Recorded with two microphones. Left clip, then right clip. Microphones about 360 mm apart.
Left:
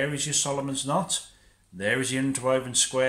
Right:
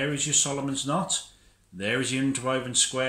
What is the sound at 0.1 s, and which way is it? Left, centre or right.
Speech, centre.